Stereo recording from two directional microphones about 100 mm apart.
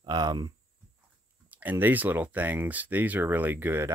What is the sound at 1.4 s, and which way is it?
Speech, 15° right (ahead or behind).